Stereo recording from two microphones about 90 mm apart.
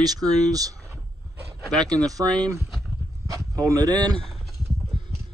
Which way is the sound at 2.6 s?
Centre (ahead or behind).